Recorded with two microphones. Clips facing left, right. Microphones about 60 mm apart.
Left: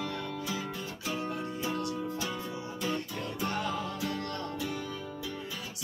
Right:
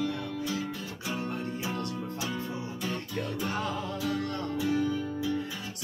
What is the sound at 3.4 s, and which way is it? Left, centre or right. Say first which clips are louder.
Music: left 3 dB; centre.